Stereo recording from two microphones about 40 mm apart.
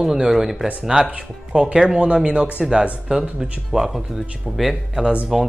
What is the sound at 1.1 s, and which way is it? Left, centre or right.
Speech, right.